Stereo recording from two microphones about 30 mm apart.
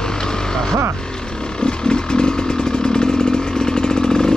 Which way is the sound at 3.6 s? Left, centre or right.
Left.